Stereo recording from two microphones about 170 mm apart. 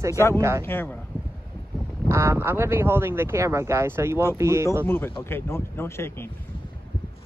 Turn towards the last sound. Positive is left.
turn(degrees=15)  # may be behind; listen again after turning